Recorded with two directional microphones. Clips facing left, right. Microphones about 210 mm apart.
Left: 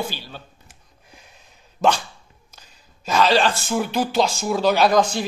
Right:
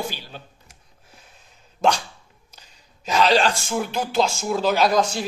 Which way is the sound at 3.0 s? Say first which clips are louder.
Left 1 dB; 15° right (ahead or behind).